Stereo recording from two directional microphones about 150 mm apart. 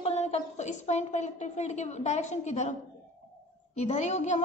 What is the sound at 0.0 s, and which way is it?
A woman's voice, 45° left (ahead or behind).